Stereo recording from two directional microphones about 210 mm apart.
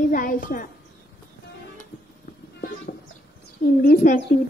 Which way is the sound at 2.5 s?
45° left (ahead or behind).